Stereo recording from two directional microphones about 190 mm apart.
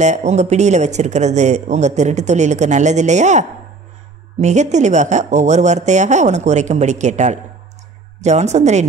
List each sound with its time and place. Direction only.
0.0 s speech: 35° right (ahead or behind)